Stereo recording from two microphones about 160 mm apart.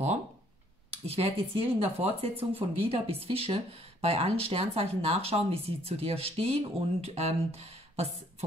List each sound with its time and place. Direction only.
1.0 s speech: 40° right (ahead or behind)